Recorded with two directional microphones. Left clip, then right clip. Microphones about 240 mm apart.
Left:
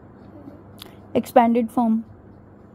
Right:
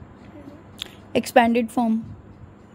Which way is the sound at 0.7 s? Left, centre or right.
Centre.